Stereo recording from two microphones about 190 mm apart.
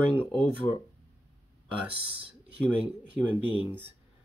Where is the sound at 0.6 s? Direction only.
20° left (ahead or behind).